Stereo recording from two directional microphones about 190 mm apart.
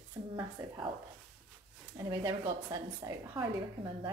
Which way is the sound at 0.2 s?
15° right (ahead or behind).